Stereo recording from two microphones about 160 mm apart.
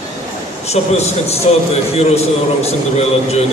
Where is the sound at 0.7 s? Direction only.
40° left (ahead or behind).